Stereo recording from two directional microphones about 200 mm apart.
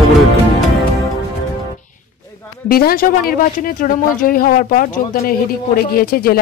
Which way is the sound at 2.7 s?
50° left (ahead or behind).